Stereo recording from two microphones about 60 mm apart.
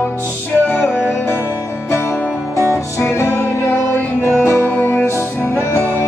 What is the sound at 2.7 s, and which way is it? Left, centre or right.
Music, left.